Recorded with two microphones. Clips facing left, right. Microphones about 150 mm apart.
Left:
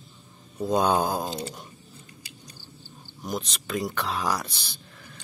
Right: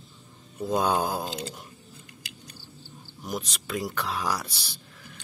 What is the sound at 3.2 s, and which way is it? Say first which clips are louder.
Speech: left 2 dB; 10° right (ahead or behind).